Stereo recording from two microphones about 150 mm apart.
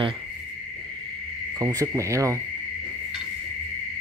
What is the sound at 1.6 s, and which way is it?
Speech, 20° right (ahead or behind).